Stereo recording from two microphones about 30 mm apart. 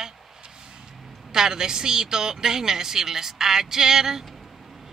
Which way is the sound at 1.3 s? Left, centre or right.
Right.